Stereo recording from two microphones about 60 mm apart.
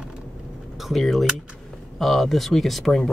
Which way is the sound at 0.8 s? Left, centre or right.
Centre.